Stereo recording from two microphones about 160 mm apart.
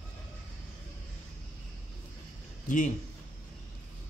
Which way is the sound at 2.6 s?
55° left (ahead or behind).